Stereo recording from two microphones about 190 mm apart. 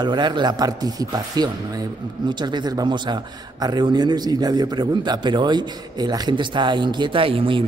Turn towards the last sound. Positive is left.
turn(degrees=-30)  # may be behind; listen again after turning